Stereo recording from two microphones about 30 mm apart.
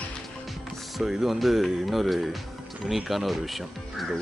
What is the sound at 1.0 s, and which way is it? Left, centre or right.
Speech, centre.